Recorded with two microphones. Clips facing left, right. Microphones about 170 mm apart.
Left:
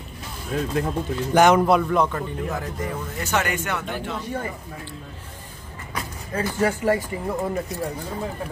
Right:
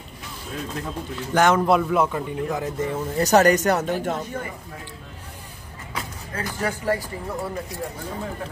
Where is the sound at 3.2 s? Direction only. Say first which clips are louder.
Right 9 dB; 40° right (ahead or behind).